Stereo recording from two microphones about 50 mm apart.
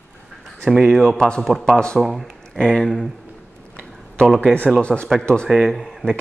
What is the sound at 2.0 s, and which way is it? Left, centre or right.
Speech, centre.